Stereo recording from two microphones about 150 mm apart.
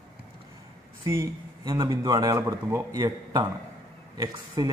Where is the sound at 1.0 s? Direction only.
20° right (ahead or behind).